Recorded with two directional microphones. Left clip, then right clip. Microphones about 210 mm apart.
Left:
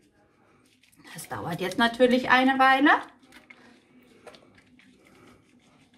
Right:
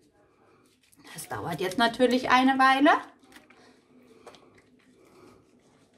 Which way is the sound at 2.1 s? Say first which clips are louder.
Left 1 dB; 50° right (ahead or behind).